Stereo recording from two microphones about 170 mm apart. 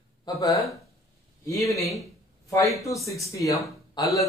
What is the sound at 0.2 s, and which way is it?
Speech, 20° left (ahead or behind).